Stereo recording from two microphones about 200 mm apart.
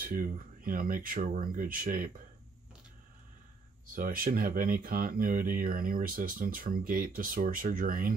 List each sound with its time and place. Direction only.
0.0 s speech: 45° right (ahead or behind)
3.8 s speech: 45° right (ahead or behind)